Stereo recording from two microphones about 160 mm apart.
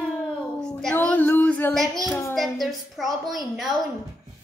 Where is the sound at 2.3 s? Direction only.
Centre (ahead or behind).